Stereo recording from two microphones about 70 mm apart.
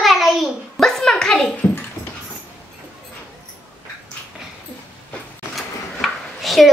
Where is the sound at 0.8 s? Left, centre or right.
Centre.